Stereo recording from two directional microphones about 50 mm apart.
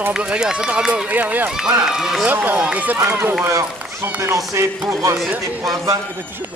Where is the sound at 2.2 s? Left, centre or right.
Right.